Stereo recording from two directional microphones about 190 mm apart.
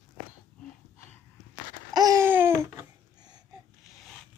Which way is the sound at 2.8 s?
20° right (ahead or behind).